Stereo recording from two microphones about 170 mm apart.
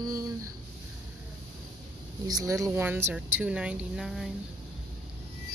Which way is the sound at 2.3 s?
20° right (ahead or behind).